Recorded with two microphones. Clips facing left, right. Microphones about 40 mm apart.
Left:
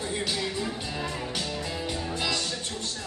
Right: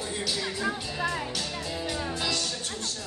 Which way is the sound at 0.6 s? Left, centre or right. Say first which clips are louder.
Right 3 dB; right.